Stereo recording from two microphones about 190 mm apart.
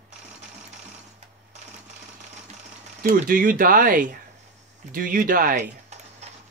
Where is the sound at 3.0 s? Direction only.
45° right (ahead or behind).